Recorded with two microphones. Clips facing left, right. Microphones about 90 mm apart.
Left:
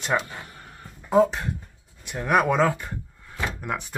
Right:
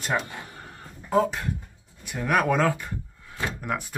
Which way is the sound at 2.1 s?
15° left (ahead or behind).